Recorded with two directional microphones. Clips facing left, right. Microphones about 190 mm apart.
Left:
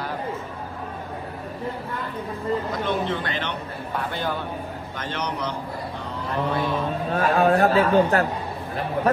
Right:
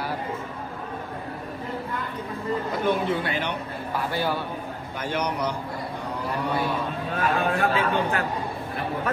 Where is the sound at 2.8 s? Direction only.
10° right (ahead or behind).